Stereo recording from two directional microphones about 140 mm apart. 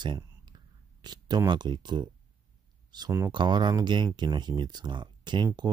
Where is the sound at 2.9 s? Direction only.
30° right (ahead or behind).